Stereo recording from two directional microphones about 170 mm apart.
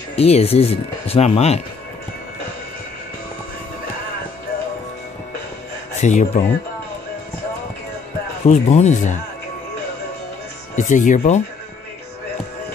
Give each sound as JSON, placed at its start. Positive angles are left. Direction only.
{"t": 0.1, "sound": "speech", "side_deg": 35}
{"t": 5.9, "sound": "speech", "side_deg": 45}
{"t": 8.5, "sound": "speech", "side_deg": 40}
{"t": 10.8, "sound": "speech", "side_deg": 45}